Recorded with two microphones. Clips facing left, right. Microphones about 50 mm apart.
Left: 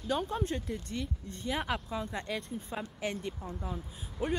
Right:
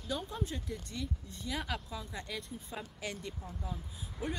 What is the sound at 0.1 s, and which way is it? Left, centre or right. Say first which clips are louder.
Speech: left 6 dB; left.